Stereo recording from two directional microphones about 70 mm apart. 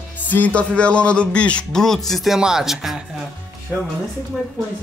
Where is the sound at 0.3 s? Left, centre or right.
Left; by 3.0 s centre.